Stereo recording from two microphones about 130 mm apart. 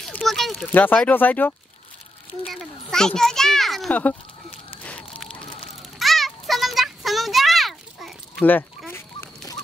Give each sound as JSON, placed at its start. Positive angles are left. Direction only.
{"t": 0.0, "sound": "a sound", "side_deg": 0}
{"t": 0.6, "sound": "speech", "side_deg": 15}
{"t": 2.4, "sound": "a child's voice", "side_deg": 5}
{"t": 3.9, "sound": "speech", "side_deg": 15}
{"t": 5.4, "sound": "a sound", "side_deg": 40}
{"t": 5.8, "sound": "children playing", "side_deg": 0}
{"t": 8.5, "sound": "fowl", "side_deg": 15}